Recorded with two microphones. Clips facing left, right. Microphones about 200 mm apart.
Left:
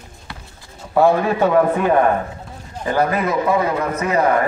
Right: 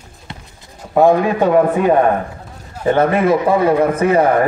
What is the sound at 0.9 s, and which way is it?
A man's voice, 15° right (ahead or behind).